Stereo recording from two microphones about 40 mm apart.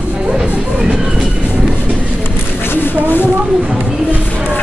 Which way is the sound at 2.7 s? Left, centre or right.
Left.